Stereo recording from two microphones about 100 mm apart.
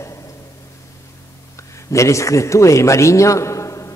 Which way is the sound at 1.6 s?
30° left (ahead or behind).